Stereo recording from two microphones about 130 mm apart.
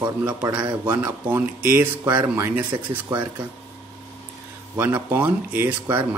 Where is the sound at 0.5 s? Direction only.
35° right (ahead or behind).